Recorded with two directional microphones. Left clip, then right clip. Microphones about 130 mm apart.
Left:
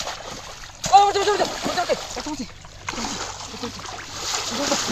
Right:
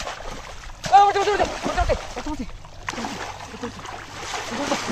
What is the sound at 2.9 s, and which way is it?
Splash, 15° right (ahead or behind).